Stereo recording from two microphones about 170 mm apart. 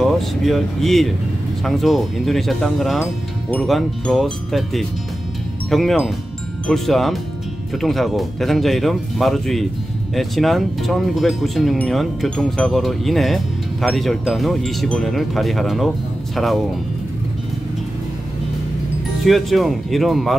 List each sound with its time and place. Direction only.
0.0 s speech: centre (ahead or behind)
19.2 s speech: centre (ahead or behind)